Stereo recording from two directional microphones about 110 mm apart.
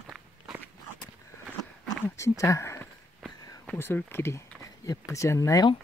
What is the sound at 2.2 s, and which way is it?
Speech, 30° left (ahead or behind).